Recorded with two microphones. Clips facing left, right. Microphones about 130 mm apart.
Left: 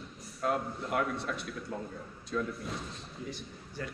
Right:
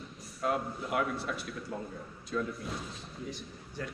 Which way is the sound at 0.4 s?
Centre (ahead or behind).